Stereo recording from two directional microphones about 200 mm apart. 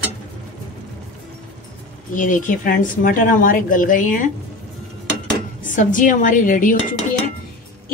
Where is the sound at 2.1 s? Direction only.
40° left (ahead or behind).